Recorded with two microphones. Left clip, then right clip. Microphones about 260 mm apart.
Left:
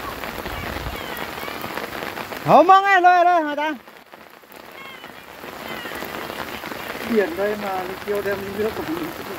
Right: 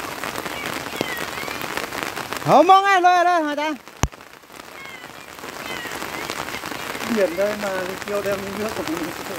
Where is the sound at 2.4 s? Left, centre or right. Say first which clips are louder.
Left 1 dB; centre.